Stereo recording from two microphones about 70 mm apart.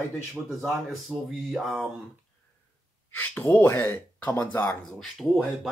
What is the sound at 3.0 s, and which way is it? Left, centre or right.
Speech, left.